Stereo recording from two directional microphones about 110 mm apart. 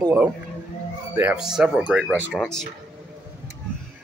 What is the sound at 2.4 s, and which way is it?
Speech, 5° left (ahead or behind).